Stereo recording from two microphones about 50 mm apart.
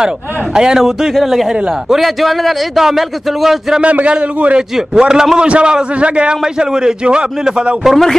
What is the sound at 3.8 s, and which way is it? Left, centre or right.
Speech, right.